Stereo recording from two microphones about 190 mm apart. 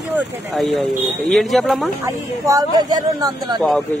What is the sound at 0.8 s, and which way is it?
Speech, centre (ahead or behind).